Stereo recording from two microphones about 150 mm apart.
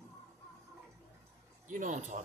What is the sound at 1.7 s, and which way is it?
Speech, 60° right (ahead or behind).